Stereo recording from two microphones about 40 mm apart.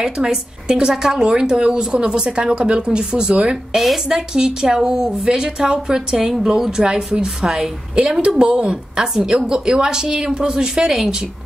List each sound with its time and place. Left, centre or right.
0.0 s a woman's voice: centre
3.7 s a woman's voice: centre
4.3 s a woman's voice: centre